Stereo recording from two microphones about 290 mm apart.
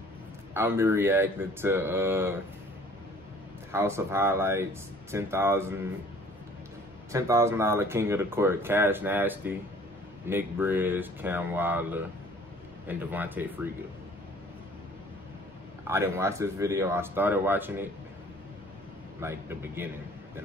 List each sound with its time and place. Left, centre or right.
0.6 s speech: centre
3.7 s speech: centre
7.1 s speech: centre
15.9 s speech: centre
19.1 s speech: centre